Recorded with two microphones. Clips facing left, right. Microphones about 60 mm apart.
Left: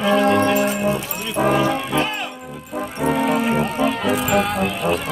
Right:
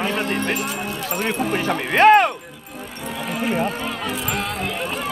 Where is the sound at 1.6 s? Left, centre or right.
Right.